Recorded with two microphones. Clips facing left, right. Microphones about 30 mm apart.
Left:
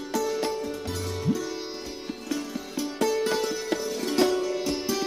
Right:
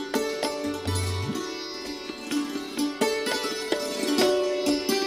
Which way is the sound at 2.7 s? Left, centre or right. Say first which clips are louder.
Even; right.